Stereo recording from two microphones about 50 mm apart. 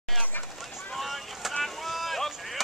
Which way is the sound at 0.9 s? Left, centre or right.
Centre.